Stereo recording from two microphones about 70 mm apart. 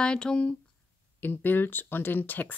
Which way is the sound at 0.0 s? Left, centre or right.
Centre.